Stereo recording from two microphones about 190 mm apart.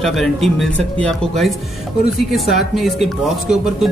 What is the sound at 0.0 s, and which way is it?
Speech, centre (ahead or behind).